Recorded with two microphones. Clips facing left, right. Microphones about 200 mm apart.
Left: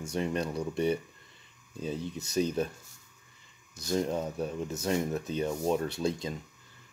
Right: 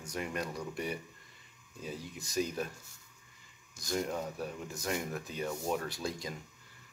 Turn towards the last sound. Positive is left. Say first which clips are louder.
# left 7 dB
turn(degrees=25)  # may be behind; listen again after turning